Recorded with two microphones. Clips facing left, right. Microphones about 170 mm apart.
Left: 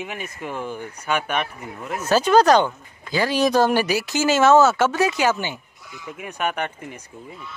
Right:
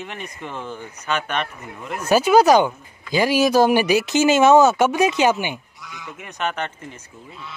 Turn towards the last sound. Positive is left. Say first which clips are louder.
# left 1 dB
turn(degrees=10)  # may be behind; listen again after turning